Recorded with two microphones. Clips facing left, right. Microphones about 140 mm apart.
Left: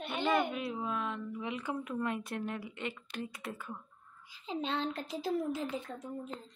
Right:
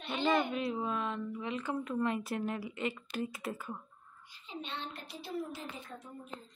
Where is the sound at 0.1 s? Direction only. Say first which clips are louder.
Right 1 dB; 5° left (ahead or behind).